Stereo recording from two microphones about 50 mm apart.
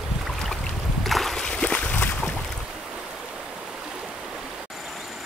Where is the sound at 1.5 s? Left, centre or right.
Left.